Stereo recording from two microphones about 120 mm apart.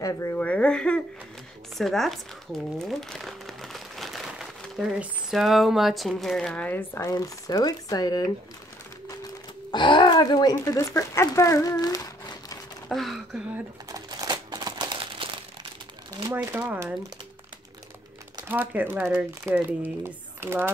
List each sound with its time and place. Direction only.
0.0 s speech: 25° left (ahead or behind)
0.4 s speech: 10° left (ahead or behind)
7.0 s speech: 30° left (ahead or behind)
9.7 s speech: 40° left (ahead or behind)
12.8 s speech: centre (ahead or behind)
13.8 s crumpling: 30° right (ahead or behind); by 15.4 s 45° right (ahead or behind)
16.5 s speech: 20° right (ahead or behind)
18.5 s speech: 15° right (ahead or behind)